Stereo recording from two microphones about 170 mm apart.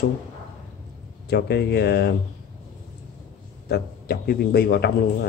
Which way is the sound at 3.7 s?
65° left (ahead or behind).